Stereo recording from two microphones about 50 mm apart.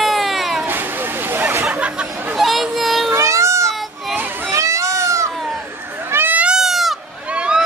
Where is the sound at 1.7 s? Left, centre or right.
Right.